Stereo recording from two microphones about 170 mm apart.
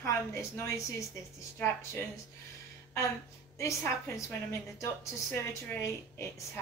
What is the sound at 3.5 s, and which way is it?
A woman's voice, 20° left (ahead or behind).